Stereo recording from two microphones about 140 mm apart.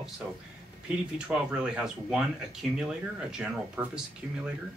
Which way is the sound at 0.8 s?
5° right (ahead or behind).